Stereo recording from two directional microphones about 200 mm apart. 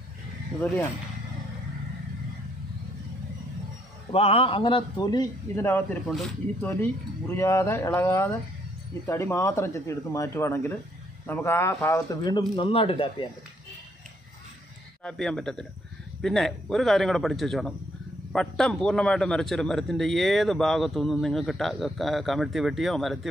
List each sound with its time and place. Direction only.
4.1 s a man's voice: 30° left (ahead or behind); by 5.9 s 10° left (ahead or behind)
6.0 s a man's voice: centre (ahead or behind)
6.6 s a man's voice: 10° left (ahead or behind)
15.0 s a man's voice: 5° left (ahead or behind)